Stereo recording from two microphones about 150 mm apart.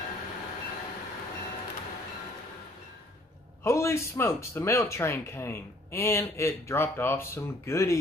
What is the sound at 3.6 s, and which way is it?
Speech, 20° left (ahead or behind).